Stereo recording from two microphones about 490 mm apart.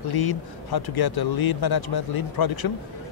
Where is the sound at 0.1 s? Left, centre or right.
Left.